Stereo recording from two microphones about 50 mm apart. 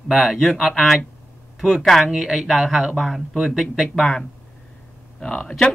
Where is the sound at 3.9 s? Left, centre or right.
Centre.